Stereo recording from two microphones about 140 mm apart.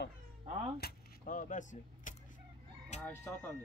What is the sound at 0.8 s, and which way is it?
Speech, 80° left.